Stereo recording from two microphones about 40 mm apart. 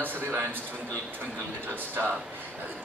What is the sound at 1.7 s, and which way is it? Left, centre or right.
Speech, right.